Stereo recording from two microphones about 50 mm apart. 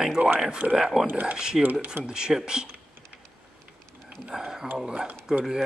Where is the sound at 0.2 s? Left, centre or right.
Right.